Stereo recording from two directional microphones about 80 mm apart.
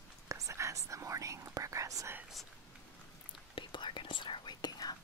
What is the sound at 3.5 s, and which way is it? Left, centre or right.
Whispering, left.